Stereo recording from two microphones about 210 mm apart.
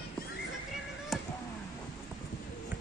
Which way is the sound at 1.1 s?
Centre (ahead or behind).